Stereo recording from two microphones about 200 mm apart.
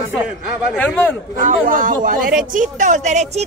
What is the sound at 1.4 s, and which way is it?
Speech, 45° right (ahead or behind).